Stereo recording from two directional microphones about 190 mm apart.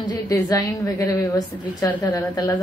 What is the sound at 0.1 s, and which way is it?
A woman's voice, 20° left (ahead or behind).